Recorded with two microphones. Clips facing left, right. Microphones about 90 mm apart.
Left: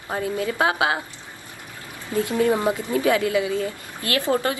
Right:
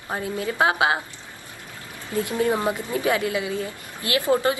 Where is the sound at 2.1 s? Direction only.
30° left (ahead or behind).